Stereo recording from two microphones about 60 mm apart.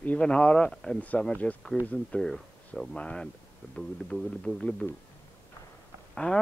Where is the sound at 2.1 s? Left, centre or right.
Centre.